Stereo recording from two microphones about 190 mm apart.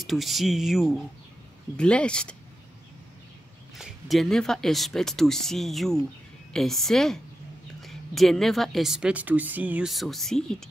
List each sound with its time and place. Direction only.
0.0 s speech: centre (ahead or behind)
3.7 s speech: centre (ahead or behind)